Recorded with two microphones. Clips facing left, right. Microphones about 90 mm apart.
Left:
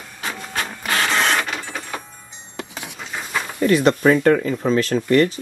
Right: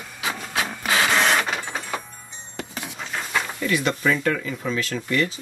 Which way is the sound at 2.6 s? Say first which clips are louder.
Left 1 dB; 65° left (ahead or behind).